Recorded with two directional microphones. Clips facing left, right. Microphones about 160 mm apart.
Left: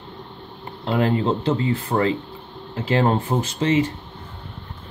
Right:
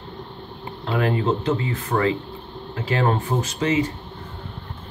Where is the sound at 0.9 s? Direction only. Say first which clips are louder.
Left 1 dB; 30° left (ahead or behind).